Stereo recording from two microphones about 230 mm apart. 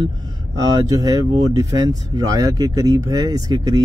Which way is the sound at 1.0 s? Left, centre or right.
Centre.